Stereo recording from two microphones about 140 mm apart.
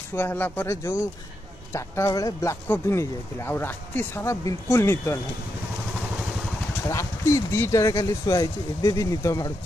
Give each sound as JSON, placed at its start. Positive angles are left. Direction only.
{"t": 0.1, "sound": "speech", "side_deg": 15}
{"t": 6.9, "sound": "speech", "side_deg": 20}